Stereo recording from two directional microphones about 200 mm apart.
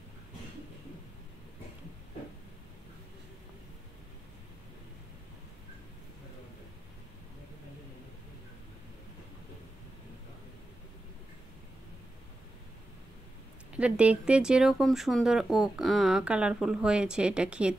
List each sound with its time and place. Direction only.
13.7 s speech: 5° right (ahead or behind)